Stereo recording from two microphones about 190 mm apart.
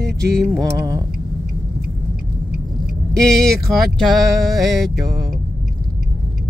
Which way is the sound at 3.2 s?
5° left (ahead or behind).